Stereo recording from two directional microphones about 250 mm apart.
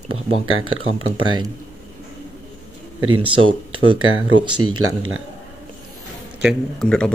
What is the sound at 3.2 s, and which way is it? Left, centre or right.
Speech, right.